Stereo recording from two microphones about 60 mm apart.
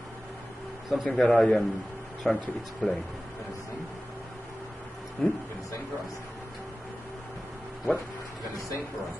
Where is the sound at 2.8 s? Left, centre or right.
Centre.